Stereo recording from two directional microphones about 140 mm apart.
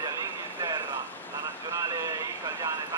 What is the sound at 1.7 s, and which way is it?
Speech, 20° right (ahead or behind).